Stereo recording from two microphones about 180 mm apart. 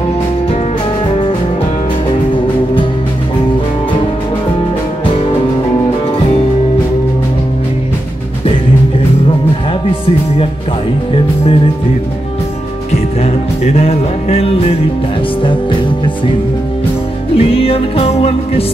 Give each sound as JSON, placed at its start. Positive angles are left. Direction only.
{"t": 13.7, "sound": "music", "side_deg": 35}
{"t": 17.4, "sound": "music", "side_deg": 30}